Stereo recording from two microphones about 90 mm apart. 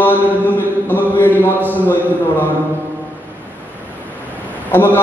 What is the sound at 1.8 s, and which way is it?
Speech, 20° left (ahead or behind).